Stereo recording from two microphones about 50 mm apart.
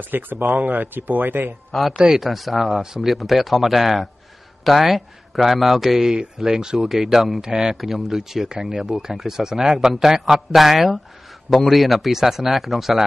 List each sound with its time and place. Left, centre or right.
0.1 s speech: right
1.7 s speech: centre